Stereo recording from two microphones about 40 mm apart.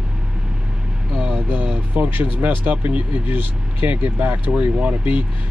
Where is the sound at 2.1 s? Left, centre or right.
Right.